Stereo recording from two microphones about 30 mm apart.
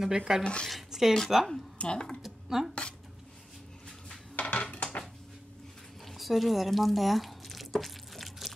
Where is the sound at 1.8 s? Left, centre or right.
Left.